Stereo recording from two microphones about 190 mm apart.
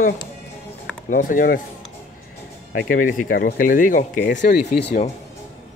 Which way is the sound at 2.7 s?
45° left (ahead or behind).